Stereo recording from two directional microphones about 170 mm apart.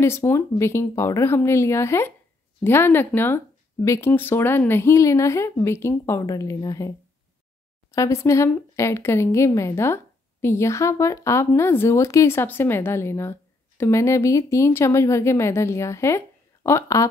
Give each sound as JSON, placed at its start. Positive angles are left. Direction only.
{"t": 0.0, "sound": "speech", "side_deg": 15}
{"t": 7.9, "sound": "speech", "side_deg": 15}